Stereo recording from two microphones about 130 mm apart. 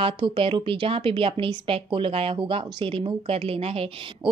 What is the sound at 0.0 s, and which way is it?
A woman's voice, 45° right (ahead or behind).